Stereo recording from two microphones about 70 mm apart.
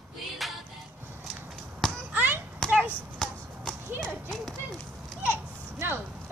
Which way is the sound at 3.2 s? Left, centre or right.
Centre.